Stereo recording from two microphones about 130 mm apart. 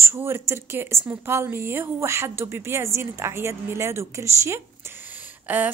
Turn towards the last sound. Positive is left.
turn(degrees=-15)  # may be behind; listen again after turning